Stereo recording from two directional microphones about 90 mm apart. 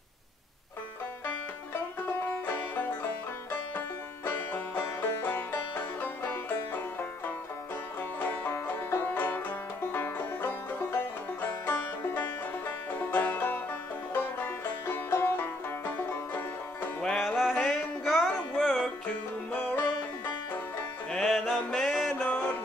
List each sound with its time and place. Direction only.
2.2 s music: 20° left (ahead or behind)
3.7 s banjo: 25° left (ahead or behind)
8.3 s banjo: 25° left (ahead or behind)
9.9 s music: 25° left (ahead or behind)
14.1 s banjo: 25° left (ahead or behind)
17.0 s music: 5° left (ahead or behind)
19.5 s banjo: 25° left (ahead or behind)
21.1 s music: 5° left (ahead or behind)